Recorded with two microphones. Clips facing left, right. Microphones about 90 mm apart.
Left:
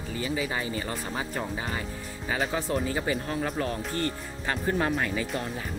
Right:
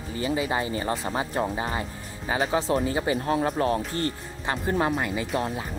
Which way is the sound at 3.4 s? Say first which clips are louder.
Right 6 dB; 40° right (ahead or behind).